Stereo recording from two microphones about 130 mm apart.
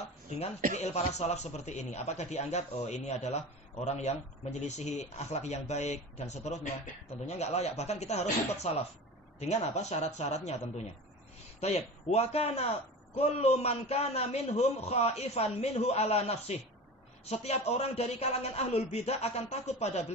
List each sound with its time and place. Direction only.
0.7 s a man's voice: 60° left (ahead or behind)
11.6 s a man's voice: 55° left (ahead or behind)